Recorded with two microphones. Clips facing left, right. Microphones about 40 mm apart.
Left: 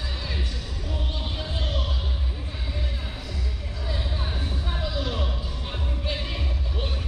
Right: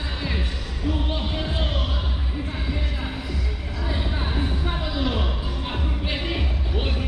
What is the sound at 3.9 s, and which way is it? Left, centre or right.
Music, right.